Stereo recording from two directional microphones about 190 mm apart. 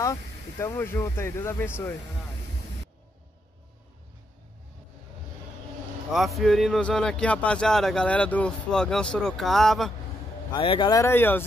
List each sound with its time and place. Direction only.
0.0 s speech: 15° left (ahead or behind)
6.1 s speech: centre (ahead or behind)
10.5 s speech: 25° left (ahead or behind); by 11.4 s 10° left (ahead or behind)